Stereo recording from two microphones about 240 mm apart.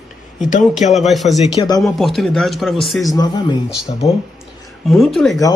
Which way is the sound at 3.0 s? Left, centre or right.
Centre.